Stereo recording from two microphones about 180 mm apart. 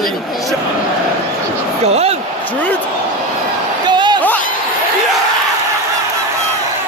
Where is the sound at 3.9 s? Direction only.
25° right (ahead or behind).